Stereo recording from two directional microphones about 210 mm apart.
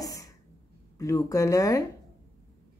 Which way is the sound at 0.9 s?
15° left (ahead or behind).